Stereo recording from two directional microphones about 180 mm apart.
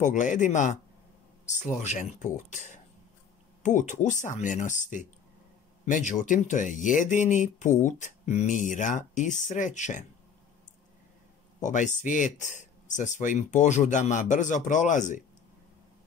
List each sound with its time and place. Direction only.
0.0 s speech: 45° left (ahead or behind)
11.6 s speech: 45° left (ahead or behind)